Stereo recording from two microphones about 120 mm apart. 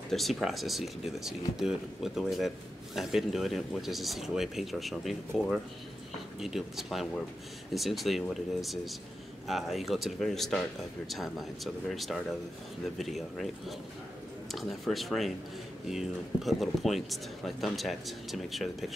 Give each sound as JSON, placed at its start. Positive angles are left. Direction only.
{"t": 0.1, "sound": "speech", "side_deg": 0}
{"t": 6.4, "sound": "speech", "side_deg": -5}